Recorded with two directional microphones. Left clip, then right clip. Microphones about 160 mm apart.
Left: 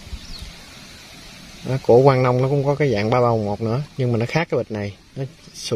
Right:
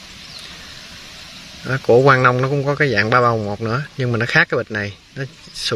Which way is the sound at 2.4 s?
Centre (ahead or behind).